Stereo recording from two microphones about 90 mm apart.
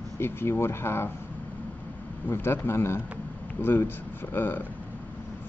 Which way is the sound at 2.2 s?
25° left (ahead or behind).